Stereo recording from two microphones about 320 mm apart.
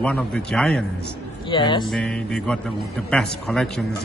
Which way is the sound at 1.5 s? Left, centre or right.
Centre.